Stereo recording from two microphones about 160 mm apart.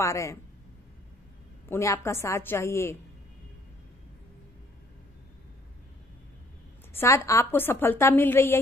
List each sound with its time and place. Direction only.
0.0 s speech: 20° left (ahead or behind)
1.7 s a woman's voice: 20° left (ahead or behind)
6.9 s a woman's voice: 15° left (ahead or behind)